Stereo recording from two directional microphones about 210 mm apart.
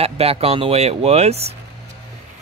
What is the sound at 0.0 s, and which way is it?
Speech, 30° right (ahead or behind).